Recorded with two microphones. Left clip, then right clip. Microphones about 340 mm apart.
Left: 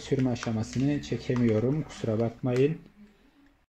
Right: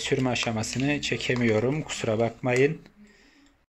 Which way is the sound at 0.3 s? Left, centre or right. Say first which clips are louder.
Right 5 dB; right.